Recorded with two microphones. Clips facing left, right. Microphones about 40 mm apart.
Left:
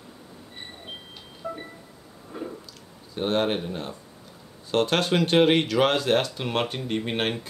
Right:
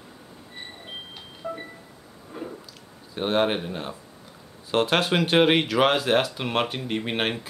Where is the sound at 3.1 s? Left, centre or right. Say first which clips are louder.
Right 1 dB; centre.